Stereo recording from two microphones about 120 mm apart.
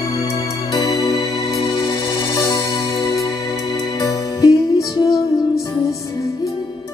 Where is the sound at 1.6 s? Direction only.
40° left (ahead or behind).